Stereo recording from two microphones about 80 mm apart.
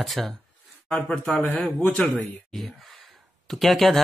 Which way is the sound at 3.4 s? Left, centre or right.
Centre.